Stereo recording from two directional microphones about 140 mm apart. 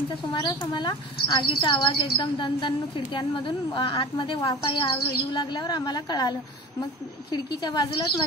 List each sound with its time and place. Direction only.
0.3 s a woman's voice: 30° left (ahead or behind)